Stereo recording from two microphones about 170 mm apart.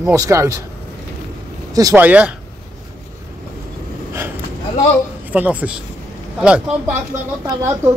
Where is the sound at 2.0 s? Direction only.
10° right (ahead or behind).